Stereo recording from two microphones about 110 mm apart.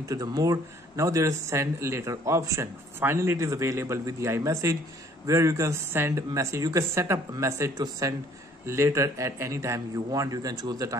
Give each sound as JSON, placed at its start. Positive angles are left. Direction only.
{"t": 0.1, "sound": "speech", "side_deg": -35}